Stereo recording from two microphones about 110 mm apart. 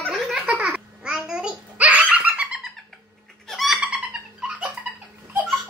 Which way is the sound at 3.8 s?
10° right (ahead or behind).